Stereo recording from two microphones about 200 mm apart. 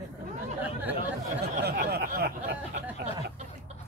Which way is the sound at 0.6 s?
10° right (ahead or behind).